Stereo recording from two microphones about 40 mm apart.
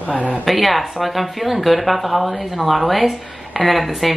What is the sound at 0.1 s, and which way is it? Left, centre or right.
Speech, right.